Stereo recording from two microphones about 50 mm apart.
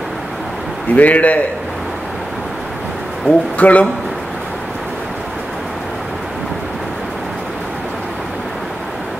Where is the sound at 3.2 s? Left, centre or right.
Left.